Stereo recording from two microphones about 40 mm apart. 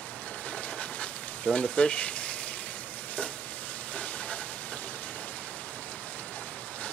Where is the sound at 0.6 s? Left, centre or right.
Left.